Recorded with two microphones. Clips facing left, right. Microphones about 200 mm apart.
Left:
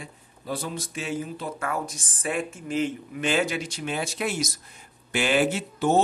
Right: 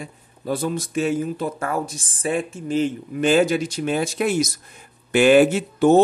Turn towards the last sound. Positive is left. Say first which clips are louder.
# right 8 dB
turn(degrees=-50)  # may be behind; listen again after turning